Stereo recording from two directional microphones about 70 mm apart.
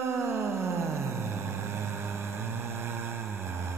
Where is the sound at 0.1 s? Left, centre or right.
Right.